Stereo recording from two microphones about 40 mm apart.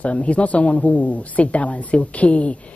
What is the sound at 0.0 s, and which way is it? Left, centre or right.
Speech, left.